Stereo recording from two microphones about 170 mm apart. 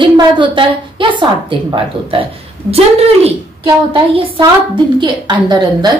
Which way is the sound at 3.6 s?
25° right (ahead or behind).